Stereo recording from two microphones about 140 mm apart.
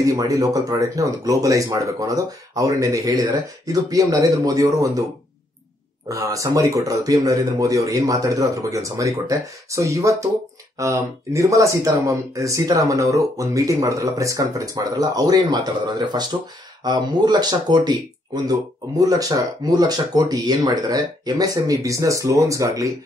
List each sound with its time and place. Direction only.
0.0 s speech: 25° right (ahead or behind)
6.0 s speech: 25° right (ahead or behind)
16.8 s speech: 30° right (ahead or behind)